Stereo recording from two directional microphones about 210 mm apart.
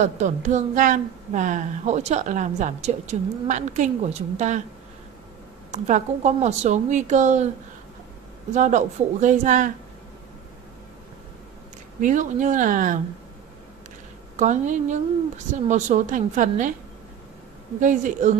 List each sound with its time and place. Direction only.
0.0 s a woman's voice: 35° right (ahead or behind)
5.7 s a woman's voice: 35° right (ahead or behind)
8.5 s a woman's voice: 35° right (ahead or behind)
12.0 s a woman's voice: 35° right (ahead or behind)
14.4 s a woman's voice: 35° right (ahead or behind)
17.7 s a woman's voice: 35° right (ahead or behind)